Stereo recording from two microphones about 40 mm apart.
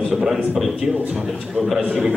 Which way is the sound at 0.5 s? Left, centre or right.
Centre.